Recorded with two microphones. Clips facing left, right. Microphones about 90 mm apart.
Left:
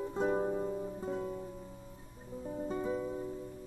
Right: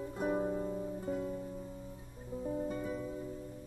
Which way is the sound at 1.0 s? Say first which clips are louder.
Even; 25° left (ahead or behind).